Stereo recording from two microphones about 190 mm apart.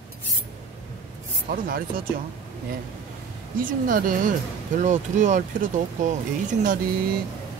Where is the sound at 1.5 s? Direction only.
50° right (ahead or behind).